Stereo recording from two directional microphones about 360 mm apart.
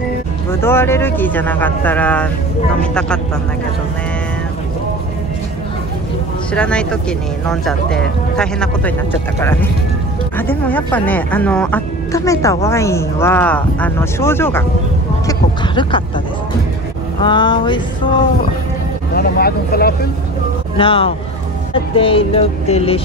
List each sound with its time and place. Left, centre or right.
0.5 s speech: centre
6.5 s speech: centre
15.2 s a sound: centre
17.2 s speech: centre
19.1 s speech: left
20.7 s speech: centre